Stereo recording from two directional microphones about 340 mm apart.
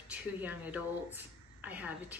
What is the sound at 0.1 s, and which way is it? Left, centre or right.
Speech, centre.